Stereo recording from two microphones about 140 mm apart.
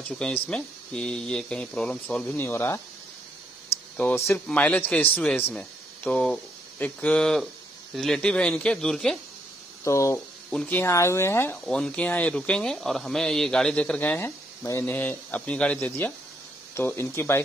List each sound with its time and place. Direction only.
0.1 s speech: 10° left (ahead or behind)
3.9 s speech: 10° left (ahead or behind)
9.8 s speech: 20° left (ahead or behind)
10.1 s speech: 10° left (ahead or behind)
10.8 s speech: 20° left (ahead or behind)
11.5 s speech: 5° left (ahead or behind)